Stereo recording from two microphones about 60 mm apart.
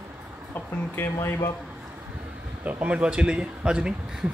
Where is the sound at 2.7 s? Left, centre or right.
Right.